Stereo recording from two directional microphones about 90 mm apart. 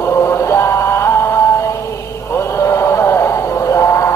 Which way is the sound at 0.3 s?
30° left (ahead or behind).